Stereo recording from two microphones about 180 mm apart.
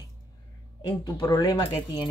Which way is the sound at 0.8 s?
20° left (ahead or behind).